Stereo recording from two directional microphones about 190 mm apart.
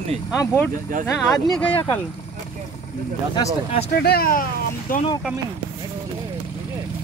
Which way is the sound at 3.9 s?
55° left (ahead or behind).